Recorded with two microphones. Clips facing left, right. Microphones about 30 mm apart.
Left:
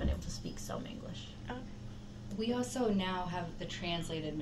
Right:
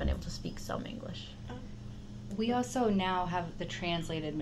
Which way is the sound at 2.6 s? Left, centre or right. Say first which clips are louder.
Right 3 dB; right.